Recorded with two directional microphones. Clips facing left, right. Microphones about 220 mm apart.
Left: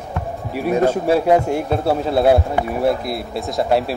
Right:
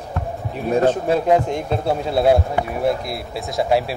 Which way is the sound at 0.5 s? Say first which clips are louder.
Left 1 dB; 10° left (ahead or behind).